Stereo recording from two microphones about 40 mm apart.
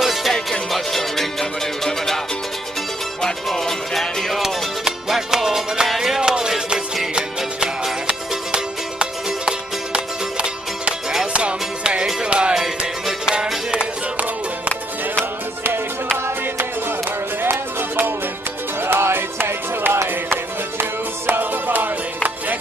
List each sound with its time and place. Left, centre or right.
0.0 s music: centre
3.4 s music: centre
4.4 s music: centre
6.2 s music: right
8.1 s music: right
11.3 s music: right
12.5 s music: centre
15.1 s music: right
17.4 s music: right
18.8 s music: right
21.3 s music: right